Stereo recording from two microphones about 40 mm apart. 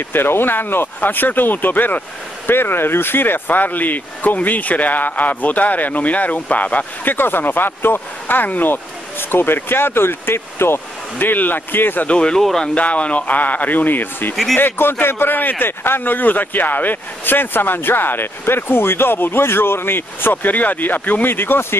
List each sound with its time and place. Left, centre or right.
0.1 s a man's voice: left
2.5 s speech: left
7.1 s a man's voice: left
9.3 s speech: left
11.1 s speech: left
12.1 s speech: left
12.4 s speech: centre
12.7 s speech: left
14.3 s speech: centre
14.6 s a man's voice: left